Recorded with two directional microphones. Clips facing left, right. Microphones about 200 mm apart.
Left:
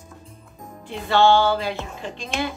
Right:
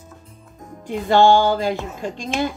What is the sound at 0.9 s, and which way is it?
Speech, 45° right (ahead or behind).